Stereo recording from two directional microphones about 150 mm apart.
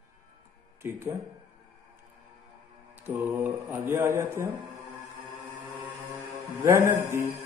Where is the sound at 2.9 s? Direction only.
15° right (ahead or behind).